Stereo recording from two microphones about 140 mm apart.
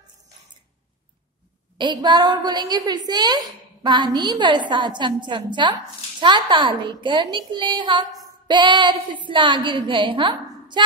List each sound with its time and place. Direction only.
1.8 s a woman's voice: 30° right (ahead or behind)